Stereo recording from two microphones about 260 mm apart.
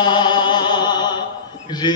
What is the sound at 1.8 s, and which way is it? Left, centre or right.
Speech, centre.